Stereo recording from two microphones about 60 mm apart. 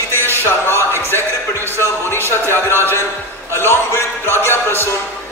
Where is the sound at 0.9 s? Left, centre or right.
Left.